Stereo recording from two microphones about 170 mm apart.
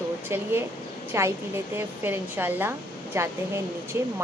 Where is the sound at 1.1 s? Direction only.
15° right (ahead or behind).